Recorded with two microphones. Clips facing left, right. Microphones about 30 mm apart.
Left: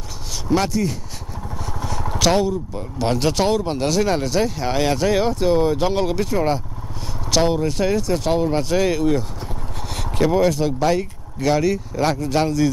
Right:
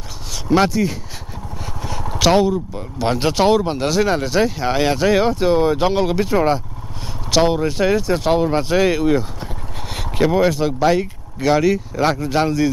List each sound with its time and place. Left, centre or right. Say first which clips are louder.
0.7 s speech: right 2 dB; centre